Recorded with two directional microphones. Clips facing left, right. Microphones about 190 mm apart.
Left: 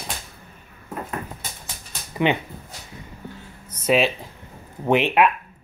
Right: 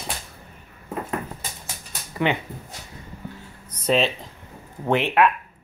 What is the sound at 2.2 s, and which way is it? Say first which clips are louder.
Speech: left 2 dB; 20° left (ahead or behind).